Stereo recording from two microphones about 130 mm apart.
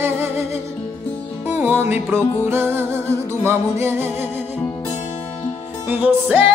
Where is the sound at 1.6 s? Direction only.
15° right (ahead or behind).